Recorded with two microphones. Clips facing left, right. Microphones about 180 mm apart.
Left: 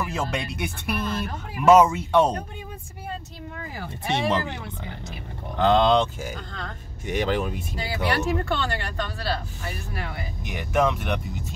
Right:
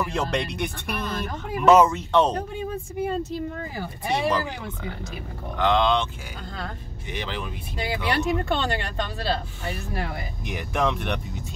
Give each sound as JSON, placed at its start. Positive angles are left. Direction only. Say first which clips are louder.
{"t": 0.0, "sound": "speech", "louder": "right 2 dB", "side_deg": 5}
{"t": 4.1, "sound": "speech", "louder": "even", "side_deg": 25}
{"t": 5.6, "sound": "speech", "louder": "left 3 dB", "side_deg": 35}
{"t": 7.1, "sound": "speech", "louder": "left 8 dB", "side_deg": 45}
{"t": 7.7, "sound": "speech", "louder": "right 2 dB", "side_deg": -20}
{"t": 10.4, "sound": "speech", "louder": "left 3 dB", "side_deg": 0}